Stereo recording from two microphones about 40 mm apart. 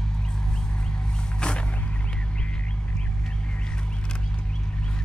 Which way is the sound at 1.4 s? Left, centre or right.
Left.